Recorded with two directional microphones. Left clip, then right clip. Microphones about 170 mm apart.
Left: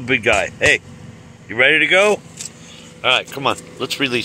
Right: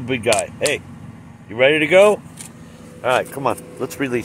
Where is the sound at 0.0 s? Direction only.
5° left (ahead or behind).